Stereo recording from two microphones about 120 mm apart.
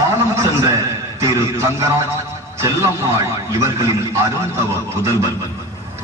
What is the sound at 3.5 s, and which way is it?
Speech, 25° right (ahead or behind).